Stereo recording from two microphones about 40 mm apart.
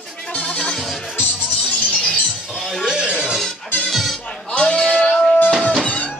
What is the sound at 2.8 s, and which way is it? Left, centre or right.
Music, right.